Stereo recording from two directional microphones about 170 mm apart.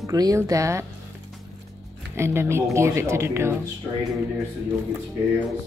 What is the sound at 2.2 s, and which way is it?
Speech, 15° right (ahead or behind).